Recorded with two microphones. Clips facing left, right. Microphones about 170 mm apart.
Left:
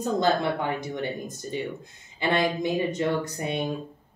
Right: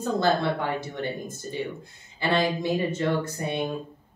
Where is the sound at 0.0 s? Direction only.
20° left (ahead or behind).